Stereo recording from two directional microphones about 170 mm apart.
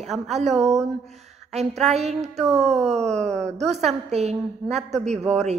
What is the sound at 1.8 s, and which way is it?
A woman's voice, 40° right (ahead or behind).